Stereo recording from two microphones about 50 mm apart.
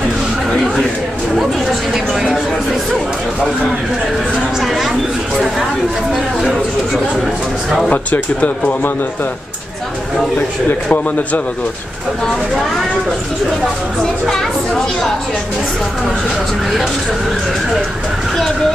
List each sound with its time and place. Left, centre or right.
1.3 s chatter: centre
4.6 s a sound: centre
6.1 s a sound: centre
7.9 s speech: left
10.9 s speech: left
14.3 s speech: centre